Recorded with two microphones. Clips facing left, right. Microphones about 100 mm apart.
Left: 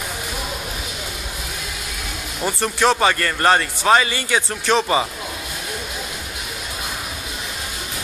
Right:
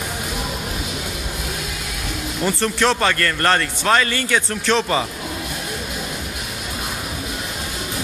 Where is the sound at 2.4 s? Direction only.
10° left (ahead or behind).